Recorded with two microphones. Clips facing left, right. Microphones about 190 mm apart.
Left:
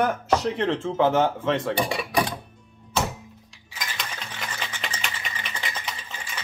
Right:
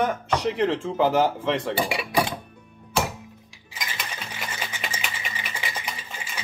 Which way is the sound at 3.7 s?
5° right (ahead or behind).